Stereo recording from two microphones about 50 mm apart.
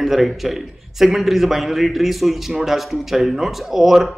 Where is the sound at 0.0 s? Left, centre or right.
Centre.